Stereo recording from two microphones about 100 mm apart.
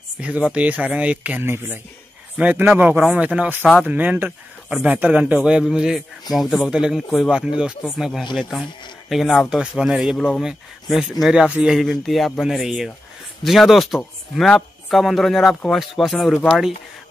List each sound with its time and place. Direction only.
0.2 s speech: 10° right (ahead or behind)
1.4 s speech: 25° right (ahead or behind); by 10.1 s 5° right (ahead or behind)
10.1 s speech: 10° left (ahead or behind)
10.4 s speech: 5° right (ahead or behind)
11.8 s speech: centre (ahead or behind)